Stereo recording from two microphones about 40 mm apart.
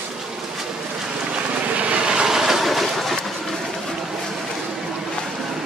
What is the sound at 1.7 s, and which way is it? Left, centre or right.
Vehicle, right.